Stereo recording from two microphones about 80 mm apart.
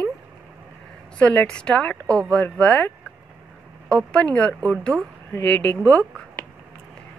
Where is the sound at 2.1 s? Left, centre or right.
Right.